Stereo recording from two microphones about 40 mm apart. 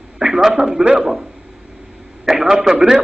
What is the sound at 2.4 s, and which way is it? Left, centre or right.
Speech, centre.